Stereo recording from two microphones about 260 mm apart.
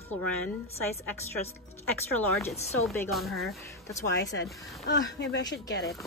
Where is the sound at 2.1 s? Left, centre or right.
Centre.